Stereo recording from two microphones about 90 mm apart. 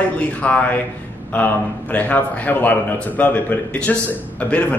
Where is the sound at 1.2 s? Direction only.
20° left (ahead or behind).